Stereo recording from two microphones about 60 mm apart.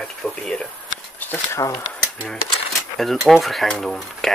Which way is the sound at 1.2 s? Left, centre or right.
Left.